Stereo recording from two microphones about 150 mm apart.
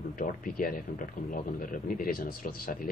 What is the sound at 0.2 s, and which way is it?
A man's voice, 70° left (ahead or behind).